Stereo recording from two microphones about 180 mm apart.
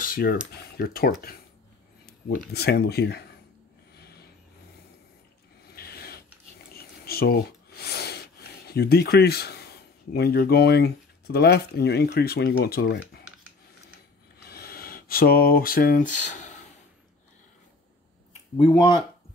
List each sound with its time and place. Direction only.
0.0 s cutlery: 55° left (ahead or behind)
0.5 s speech: 60° left (ahead or behind)
3.9 s vehicle: 60° left (ahead or behind)
5.7 s a sound: 60° left (ahead or behind)
6.7 s speech: 60° left (ahead or behind)
14.4 s a sound: 60° left (ahead or behind); by 16.6 s 40° left (ahead or behind)
18.6 s speech: 25° left (ahead or behind)